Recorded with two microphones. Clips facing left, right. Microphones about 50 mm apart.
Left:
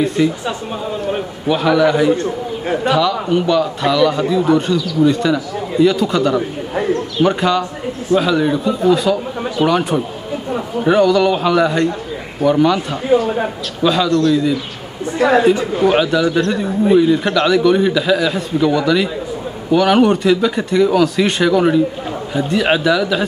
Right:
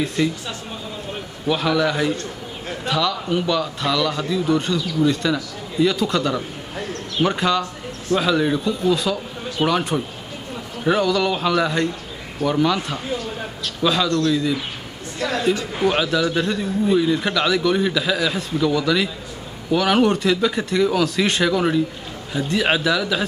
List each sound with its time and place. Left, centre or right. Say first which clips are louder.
0.0 s a man's voice: left 6 dB; centre
1.5 s a man's voice: left 6 dB; centre
15.1 s a woman's voice: left 9 dB; left
15.8 s a man's voice: left 4 dB; centre